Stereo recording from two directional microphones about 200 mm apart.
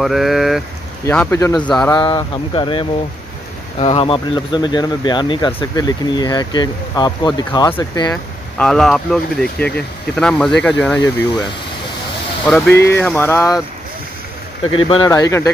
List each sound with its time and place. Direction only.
0.0 s speech: centre (ahead or behind)
1.0 s speech: 10° left (ahead or behind)
8.1 s speech: 5° left (ahead or behind)
12.4 s speech: 5° left (ahead or behind)
14.7 s speech: 25° left (ahead or behind)